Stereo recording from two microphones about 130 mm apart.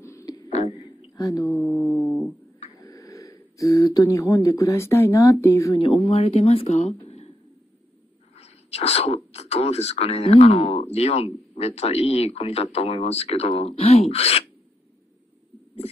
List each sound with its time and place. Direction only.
0.0 s a sound: 25° left (ahead or behind)
1.1 s speech: 25° left (ahead or behind)
1.5 s mantra: centre (ahead or behind)
2.8 s speech: 25° left (ahead or behind)
6.0 s speech: 50° left (ahead or behind)
8.4 s speech: 55° left (ahead or behind)